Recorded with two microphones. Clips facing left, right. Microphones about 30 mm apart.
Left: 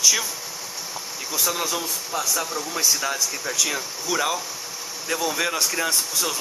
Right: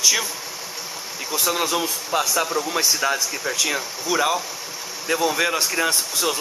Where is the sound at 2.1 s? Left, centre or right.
Right.